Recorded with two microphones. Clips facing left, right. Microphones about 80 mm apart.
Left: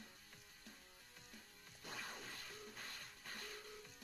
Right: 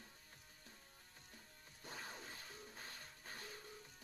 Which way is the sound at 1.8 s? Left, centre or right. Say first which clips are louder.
Left 1 dB; right.